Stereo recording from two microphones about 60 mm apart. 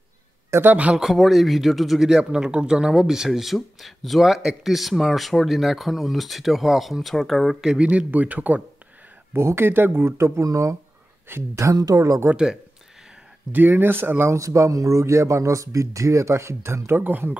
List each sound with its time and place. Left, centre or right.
0.7 s speech: right
0.9 s speech: centre
7.6 s speech: centre
8.1 s speech: right
9.3 s speech: right
10.4 s speech: right
11.3 s speech: right
11.7 s speech: right
13.5 s speech: right
14.3 s speech: right
17.0 s speech: right